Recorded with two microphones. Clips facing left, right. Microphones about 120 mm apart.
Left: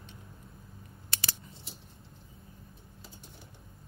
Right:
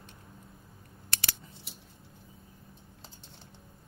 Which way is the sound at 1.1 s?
65° right (ahead or behind).